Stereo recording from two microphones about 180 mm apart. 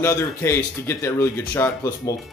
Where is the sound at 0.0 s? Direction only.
15° left (ahead or behind).